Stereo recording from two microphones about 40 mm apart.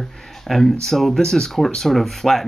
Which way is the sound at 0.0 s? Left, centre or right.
Centre.